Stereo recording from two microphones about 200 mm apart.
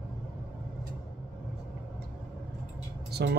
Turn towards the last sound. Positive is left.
turn(degrees=-55)  # may be behind; listen again after turning